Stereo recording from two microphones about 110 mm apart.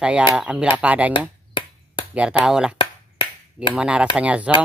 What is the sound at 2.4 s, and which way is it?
Speech, 5° right (ahead or behind).